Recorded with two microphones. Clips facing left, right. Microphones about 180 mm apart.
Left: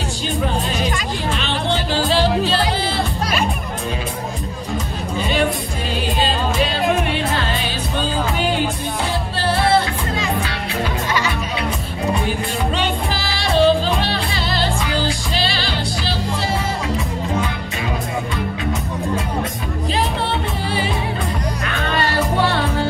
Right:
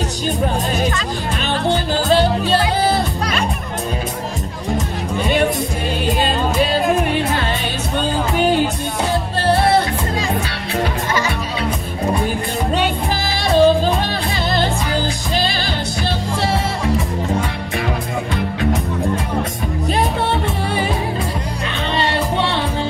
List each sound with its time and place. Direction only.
13.6 s music: 45° right (ahead or behind)
21.8 s music: 25° right (ahead or behind)